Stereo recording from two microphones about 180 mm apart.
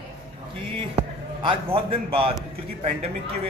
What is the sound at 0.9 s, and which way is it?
A man's voice, 30° right (ahead or behind).